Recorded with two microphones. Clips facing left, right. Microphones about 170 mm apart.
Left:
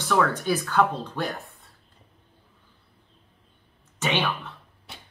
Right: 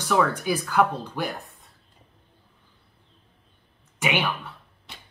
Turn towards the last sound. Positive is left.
turn(degrees=-10)  # may be behind; listen again after turning